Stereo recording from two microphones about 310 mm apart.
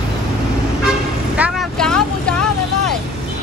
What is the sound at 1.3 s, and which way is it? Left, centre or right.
Vehicle, centre.